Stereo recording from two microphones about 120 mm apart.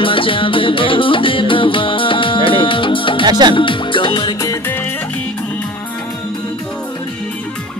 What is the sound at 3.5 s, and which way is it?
Music, 45° left (ahead or behind).